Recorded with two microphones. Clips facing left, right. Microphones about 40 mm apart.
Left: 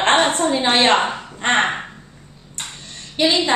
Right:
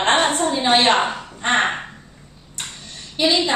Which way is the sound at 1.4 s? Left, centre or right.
Left.